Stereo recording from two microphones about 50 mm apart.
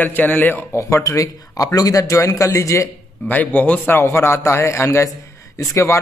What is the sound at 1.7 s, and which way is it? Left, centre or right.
A man's voice, left.